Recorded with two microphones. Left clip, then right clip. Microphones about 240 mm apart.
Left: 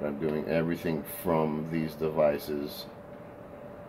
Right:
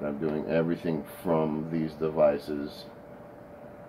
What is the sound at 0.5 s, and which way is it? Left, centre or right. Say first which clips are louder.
Speech: right 4 dB; left.